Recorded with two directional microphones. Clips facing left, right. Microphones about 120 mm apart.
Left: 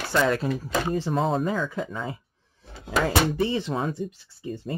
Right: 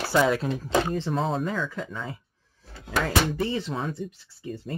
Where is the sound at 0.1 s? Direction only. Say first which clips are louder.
Even; 5° right (ahead or behind).